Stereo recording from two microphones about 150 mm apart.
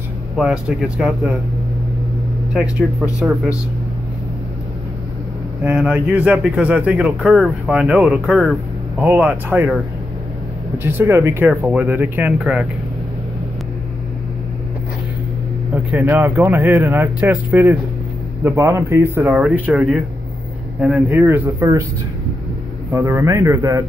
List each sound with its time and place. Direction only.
0.4 s speech: 5° right (ahead or behind)
2.5 s speech: 5° right (ahead or behind)
5.6 s speech: 10° right (ahead or behind)
10.8 s speech: 15° right (ahead or behind)
15.7 s a man's voice: 10° right (ahead or behind)
22.8 s a man's voice: 15° right (ahead or behind)